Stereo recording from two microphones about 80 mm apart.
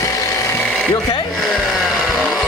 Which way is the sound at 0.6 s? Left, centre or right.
Centre.